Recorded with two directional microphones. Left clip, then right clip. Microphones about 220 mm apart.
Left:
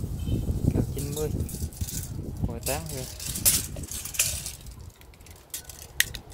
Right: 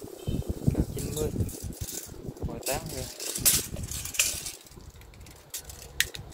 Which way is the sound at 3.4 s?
20° left (ahead or behind).